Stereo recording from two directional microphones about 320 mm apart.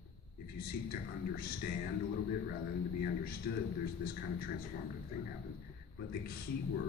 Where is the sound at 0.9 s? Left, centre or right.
Left.